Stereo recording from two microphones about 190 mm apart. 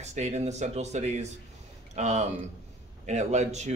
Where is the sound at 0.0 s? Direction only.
35° right (ahead or behind).